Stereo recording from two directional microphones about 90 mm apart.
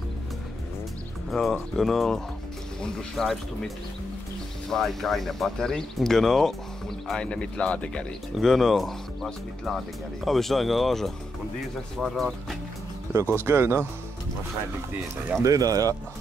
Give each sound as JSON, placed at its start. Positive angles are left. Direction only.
{"t": 1.3, "sound": "speech", "side_deg": 5}
{"t": 13.4, "sound": "speech", "side_deg": -30}
{"t": 15.4, "sound": "speech", "side_deg": -40}